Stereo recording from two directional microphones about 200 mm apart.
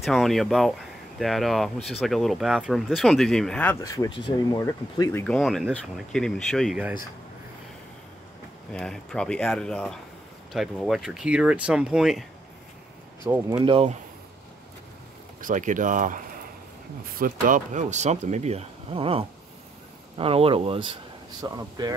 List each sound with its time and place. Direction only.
0.0 s speech: centre (ahead or behind); by 5.2 s 15° left (ahead or behind)
5.2 s speech: 5° left (ahead or behind)
8.7 s speech: 5° left (ahead or behind)
13.7 s speech: 30° right (ahead or behind)
15.4 s speech: 40° right (ahead or behind); by 21.9 s 20° right (ahead or behind)